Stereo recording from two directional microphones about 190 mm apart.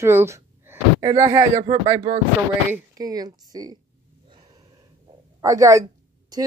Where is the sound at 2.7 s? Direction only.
20° right (ahead or behind).